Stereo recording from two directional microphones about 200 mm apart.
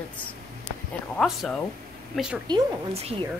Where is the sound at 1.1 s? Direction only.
Centre (ahead or behind).